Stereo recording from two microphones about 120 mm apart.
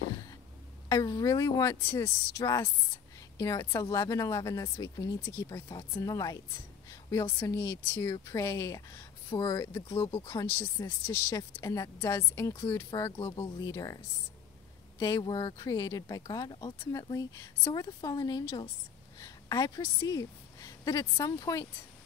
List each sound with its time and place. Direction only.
0.8 s speech: 30° left (ahead or behind)
6.9 s a sound: 25° left (ahead or behind)
7.3 s speech: 20° left (ahead or behind)
10.2 s speech: 20° left (ahead or behind)
15.0 s a woman's voice: 30° left (ahead or behind)